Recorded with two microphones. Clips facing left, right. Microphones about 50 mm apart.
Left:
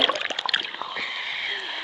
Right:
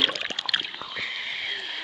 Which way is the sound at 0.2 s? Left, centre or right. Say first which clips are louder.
Left 4 dB; left.